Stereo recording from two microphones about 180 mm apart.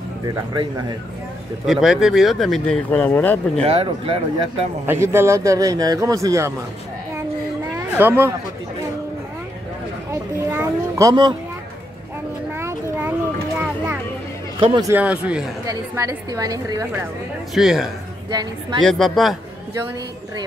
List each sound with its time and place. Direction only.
0.2 s a woman's voice: 20° right (ahead or behind)
1.7 s speech: centre (ahead or behind)
3.6 s speech: 30° right (ahead or behind)
4.8 s a man's voice: 15° right (ahead or behind)
7.7 s speech: 10° right (ahead or behind)
10.1 s a man's voice: 15° right (ahead or behind)
12.5 s a sound: 15° right (ahead or behind)
14.6 s a woman's voice: 20° right (ahead or behind)
15.0 s a man's voice: 5° right (ahead or behind)
15.6 s a woman's voice: 20° right (ahead or behind)
17.6 s speech: centre (ahead or behind)
18.3 s a woman's voice: 25° right (ahead or behind)
18.8 s speech: 5° left (ahead or behind)